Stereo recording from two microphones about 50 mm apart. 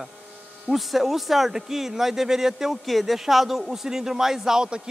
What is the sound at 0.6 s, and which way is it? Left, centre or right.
Speech, centre.